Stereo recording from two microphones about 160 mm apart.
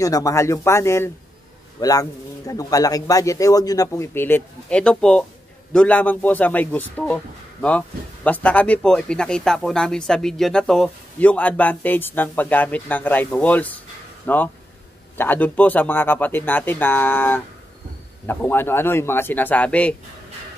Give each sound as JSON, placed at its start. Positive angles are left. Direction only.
{"t": 0.0, "sound": "a man's voice", "side_deg": 20}